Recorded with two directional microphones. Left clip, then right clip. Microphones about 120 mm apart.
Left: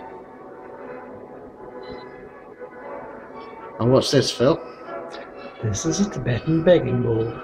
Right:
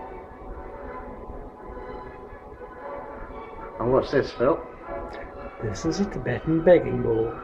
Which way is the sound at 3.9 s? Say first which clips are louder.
Left 4 dB; 60° left (ahead or behind).